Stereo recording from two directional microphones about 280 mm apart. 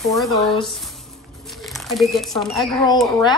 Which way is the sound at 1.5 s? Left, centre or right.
Centre.